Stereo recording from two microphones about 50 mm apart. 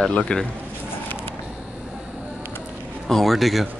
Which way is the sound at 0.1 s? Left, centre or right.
Centre.